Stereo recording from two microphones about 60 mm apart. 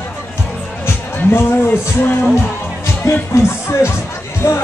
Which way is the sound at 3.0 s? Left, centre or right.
Left.